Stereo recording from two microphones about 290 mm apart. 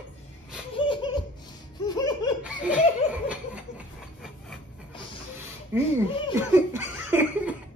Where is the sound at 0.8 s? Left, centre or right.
Centre.